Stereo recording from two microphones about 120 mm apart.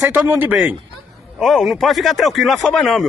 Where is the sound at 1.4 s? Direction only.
Centre (ahead or behind).